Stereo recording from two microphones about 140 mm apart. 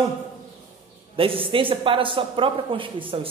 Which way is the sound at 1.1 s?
40° right (ahead or behind).